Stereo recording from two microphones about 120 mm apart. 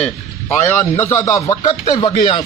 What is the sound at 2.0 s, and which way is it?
Speech, 40° left (ahead or behind).